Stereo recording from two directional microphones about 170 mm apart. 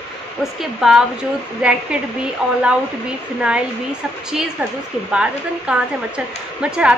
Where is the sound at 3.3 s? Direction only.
5° right (ahead or behind).